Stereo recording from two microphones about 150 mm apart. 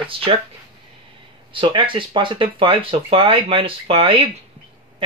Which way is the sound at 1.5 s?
35° right (ahead or behind).